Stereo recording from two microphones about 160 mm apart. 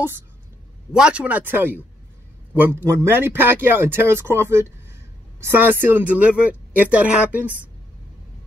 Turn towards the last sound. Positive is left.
turn(degrees=-10)  # may be behind; listen again after turning